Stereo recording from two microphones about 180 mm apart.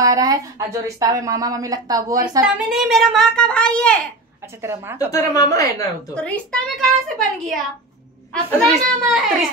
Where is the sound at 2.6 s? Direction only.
Centre (ahead or behind).